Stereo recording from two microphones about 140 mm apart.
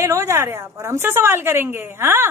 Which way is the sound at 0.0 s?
20° right (ahead or behind).